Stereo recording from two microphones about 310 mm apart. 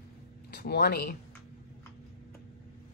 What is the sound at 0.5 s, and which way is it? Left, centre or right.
Speech, left.